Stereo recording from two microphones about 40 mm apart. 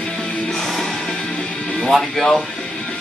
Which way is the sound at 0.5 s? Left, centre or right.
Centre.